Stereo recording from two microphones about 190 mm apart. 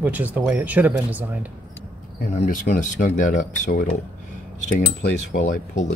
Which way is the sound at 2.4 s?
40° left (ahead or behind).